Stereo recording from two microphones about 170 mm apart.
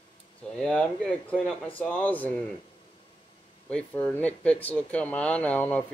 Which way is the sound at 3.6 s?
10° left (ahead or behind).